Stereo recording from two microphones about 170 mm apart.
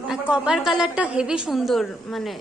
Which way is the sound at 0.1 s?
5° right (ahead or behind).